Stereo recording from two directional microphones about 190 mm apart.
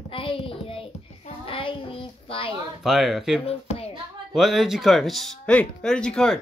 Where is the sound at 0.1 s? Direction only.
30° left (ahead or behind).